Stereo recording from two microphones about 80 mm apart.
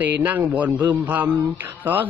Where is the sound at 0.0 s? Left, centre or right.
Right.